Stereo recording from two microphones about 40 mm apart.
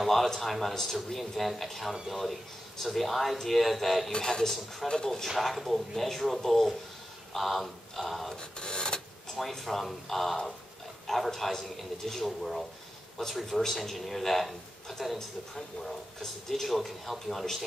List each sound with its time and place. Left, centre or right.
0.0 s speech: centre
4.1 s speech: centre
5.4 s speech: centre
8.4 s filing: left
9.4 s speech: centre